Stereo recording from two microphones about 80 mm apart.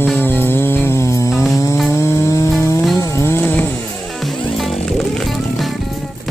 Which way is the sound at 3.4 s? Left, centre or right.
Left.